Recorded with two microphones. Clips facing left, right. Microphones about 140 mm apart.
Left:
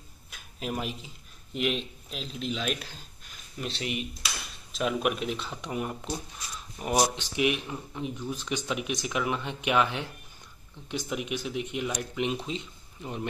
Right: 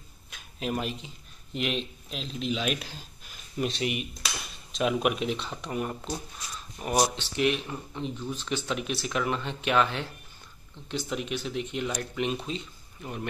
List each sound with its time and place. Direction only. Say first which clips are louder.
0.3 s speech: right 3 dB; 5° left (ahead or behind); by 4.0 s 15° right (ahead or behind)
4.7 s speech: right 2 dB; centre (ahead or behind); by 13.3 s 20° left (ahead or behind)